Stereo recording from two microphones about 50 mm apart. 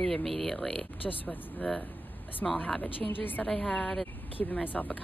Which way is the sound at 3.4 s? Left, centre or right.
Centre.